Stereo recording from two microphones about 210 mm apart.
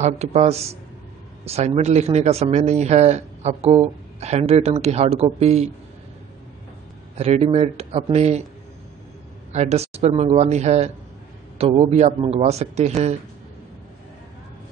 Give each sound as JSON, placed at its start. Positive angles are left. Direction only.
{"t": 0.0, "sound": "speech", "side_deg": -30}
{"t": 7.2, "sound": "speech", "side_deg": -30}
{"t": 9.5, "sound": "speech", "side_deg": -30}